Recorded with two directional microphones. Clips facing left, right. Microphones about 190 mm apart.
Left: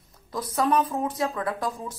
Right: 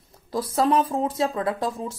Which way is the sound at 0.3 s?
30° right (ahead or behind).